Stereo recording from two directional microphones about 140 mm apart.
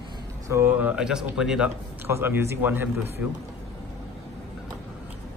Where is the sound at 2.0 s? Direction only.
15° right (ahead or behind).